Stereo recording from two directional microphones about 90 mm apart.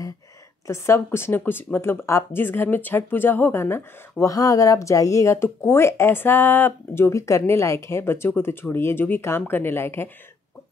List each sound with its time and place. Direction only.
0.7 s speech: 30° left (ahead or behind)
4.2 s speech: 40° left (ahead or behind)